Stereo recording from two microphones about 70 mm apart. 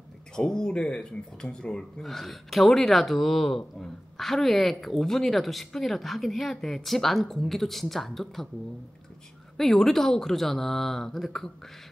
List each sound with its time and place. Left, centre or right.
0.4 s speech: centre
9.6 s speech: centre